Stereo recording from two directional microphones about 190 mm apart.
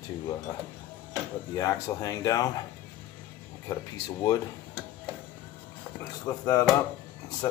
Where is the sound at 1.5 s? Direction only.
15° left (ahead or behind).